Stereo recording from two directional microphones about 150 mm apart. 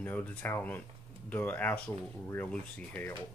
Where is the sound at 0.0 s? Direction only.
10° left (ahead or behind).